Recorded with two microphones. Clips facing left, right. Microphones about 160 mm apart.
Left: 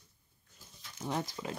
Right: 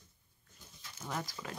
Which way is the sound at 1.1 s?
20° left (ahead or behind).